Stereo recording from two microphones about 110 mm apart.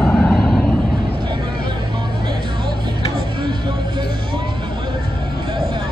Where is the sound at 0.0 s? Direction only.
5° left (ahead or behind).